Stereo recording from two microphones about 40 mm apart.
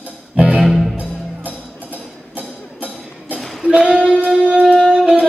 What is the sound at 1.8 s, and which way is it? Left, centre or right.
Music, right.